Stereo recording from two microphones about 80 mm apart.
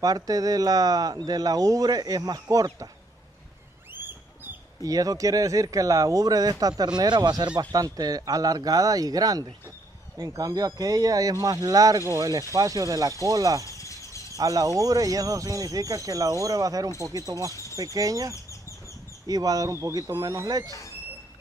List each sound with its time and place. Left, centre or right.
0.0 s speech: right
3.9 s a sound: right
4.8 s speech: right
7.7 s speech: right
13.7 s a sound: left
14.3 s speech: right
17.5 s a sound: left
17.7 s speech: right
18.3 s chicken: left
19.2 s speech: right